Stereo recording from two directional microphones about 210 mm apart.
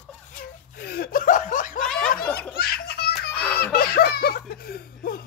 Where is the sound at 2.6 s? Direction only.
45° left (ahead or behind).